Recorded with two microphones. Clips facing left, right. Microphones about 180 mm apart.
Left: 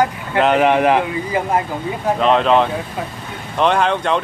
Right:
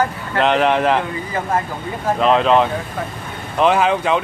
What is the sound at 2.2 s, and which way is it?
Speech, centre (ahead or behind).